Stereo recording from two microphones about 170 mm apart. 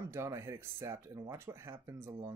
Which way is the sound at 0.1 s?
15° right (ahead or behind).